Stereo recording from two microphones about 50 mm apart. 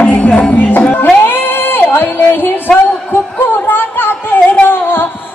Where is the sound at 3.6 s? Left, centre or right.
Left.